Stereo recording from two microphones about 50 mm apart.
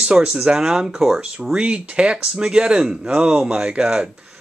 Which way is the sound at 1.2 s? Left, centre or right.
Centre.